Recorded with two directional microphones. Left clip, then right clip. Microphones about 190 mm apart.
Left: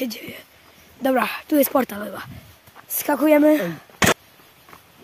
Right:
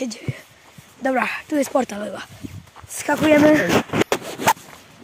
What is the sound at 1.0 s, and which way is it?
Speech, 20° left (ahead or behind).